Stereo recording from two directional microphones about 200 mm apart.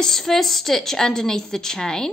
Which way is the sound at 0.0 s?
Centre (ahead or behind).